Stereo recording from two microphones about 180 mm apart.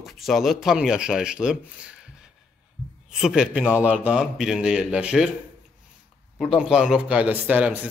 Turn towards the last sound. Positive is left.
turn(degrees=-5)  # may be behind; listen again after turning